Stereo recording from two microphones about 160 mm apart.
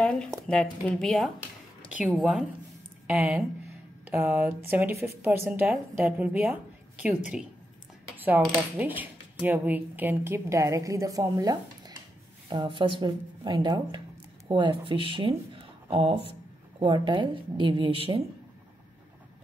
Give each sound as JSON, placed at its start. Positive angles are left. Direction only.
{"t": 0.0, "sound": "speech", "side_deg": 5}
{"t": 1.9, "sound": "speech", "side_deg": -10}
{"t": 4.1, "sound": "a woman's voice", "side_deg": -15}
{"t": 8.2, "sound": "a woman's voice", "side_deg": -10}